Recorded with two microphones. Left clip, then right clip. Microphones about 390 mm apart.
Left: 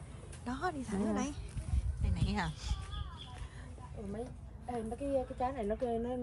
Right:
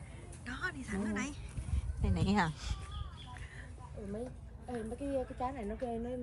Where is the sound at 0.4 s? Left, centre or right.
Centre.